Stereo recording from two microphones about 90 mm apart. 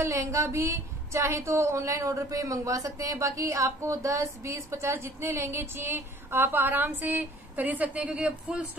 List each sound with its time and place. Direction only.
0.0 s a woman's voice: 35° right (ahead or behind); by 8.6 s 15° right (ahead or behind)